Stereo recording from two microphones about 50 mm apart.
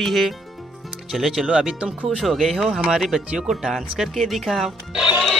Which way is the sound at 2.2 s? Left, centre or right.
Centre.